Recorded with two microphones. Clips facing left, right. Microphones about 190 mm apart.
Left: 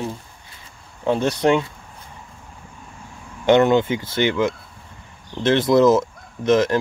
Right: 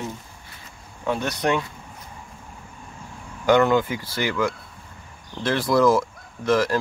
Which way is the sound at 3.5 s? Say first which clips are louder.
Left 3 dB; 25° left (ahead or behind).